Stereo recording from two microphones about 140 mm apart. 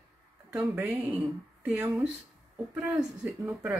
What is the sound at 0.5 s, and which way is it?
Speech, 10° right (ahead or behind).